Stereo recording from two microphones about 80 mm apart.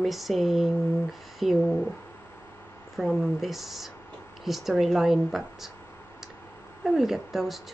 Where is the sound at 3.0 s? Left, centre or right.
Centre.